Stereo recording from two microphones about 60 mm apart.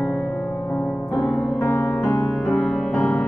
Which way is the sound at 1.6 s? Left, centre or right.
Left.